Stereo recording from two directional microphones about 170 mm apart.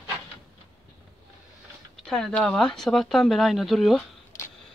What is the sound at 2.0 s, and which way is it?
Speech, centre (ahead or behind).